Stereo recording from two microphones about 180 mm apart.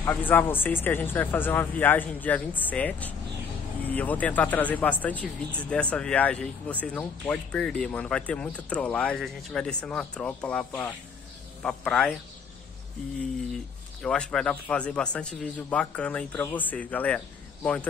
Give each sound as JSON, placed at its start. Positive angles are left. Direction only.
{"t": 0.0, "sound": "speech", "side_deg": 10}
{"t": 14.0, "sound": "speech", "side_deg": 5}